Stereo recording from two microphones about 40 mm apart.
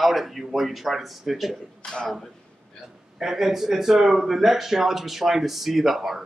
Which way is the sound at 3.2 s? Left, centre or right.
Centre.